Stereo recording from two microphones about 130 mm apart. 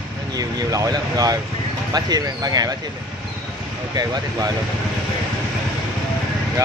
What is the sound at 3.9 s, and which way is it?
Speech, 30° right (ahead or behind).